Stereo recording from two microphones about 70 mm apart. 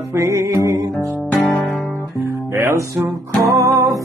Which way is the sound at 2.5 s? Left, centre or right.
Right.